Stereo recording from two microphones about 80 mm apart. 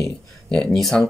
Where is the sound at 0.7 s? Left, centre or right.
Centre.